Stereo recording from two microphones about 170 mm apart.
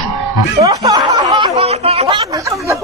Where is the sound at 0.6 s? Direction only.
20° right (ahead or behind).